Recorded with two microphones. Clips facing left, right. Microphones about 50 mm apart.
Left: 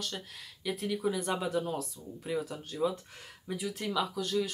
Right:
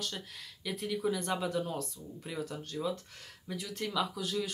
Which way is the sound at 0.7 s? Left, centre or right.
Centre.